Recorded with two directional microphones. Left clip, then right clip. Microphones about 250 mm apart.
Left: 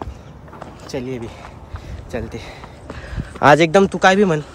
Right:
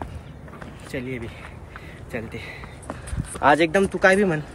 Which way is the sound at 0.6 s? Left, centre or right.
Centre.